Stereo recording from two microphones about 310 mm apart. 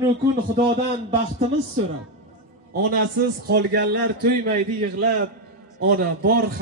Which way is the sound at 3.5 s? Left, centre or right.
Right.